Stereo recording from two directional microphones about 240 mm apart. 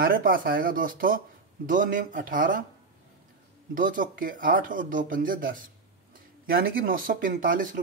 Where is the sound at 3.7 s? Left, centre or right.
Right.